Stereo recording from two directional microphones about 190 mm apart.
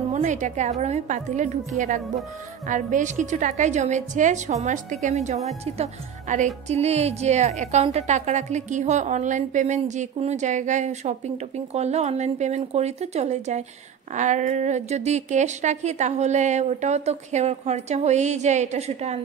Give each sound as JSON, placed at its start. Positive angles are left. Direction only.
{"t": 0.1, "sound": "speech", "side_deg": -40}
{"t": 2.7, "sound": "speech", "side_deg": -40}